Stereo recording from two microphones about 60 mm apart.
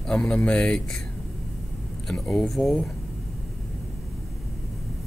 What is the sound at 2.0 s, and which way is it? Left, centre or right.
Speech, centre.